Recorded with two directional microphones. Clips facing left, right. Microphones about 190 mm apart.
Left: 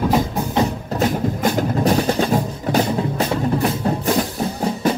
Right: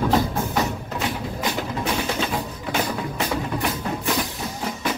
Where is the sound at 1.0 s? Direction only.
45° left (ahead or behind).